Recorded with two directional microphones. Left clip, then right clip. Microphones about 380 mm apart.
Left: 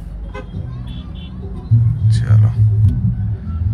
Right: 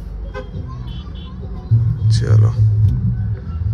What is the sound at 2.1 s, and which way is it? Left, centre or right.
Speech, centre.